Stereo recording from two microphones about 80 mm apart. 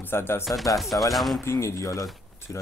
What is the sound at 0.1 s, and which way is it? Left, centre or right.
Speech, left.